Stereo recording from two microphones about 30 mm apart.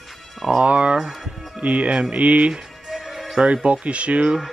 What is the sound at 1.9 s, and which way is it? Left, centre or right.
Speech, right.